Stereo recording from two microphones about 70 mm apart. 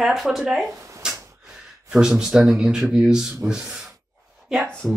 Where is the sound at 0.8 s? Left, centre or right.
Right.